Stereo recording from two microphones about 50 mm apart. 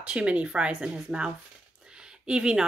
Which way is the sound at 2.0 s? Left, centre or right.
Centre.